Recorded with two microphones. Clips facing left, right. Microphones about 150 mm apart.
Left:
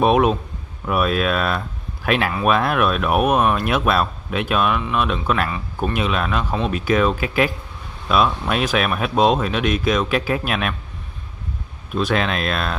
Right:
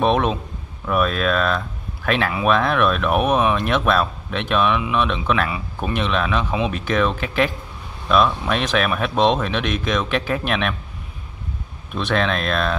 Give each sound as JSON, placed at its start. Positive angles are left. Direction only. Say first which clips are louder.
{"t": 0.0, "sound": "speech", "louder": "left 3 dB", "side_deg": 10}
{"t": 12.0, "sound": "speech", "louder": "even", "side_deg": 5}